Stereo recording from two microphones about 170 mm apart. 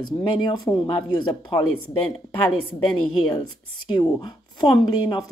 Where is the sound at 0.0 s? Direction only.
25° left (ahead or behind).